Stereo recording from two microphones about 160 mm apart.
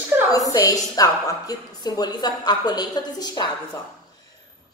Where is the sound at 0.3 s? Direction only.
20° left (ahead or behind).